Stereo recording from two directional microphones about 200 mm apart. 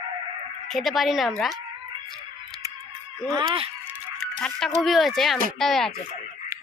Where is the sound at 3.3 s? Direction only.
25° right (ahead or behind).